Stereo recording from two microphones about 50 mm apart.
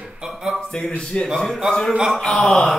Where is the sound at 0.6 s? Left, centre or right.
Centre.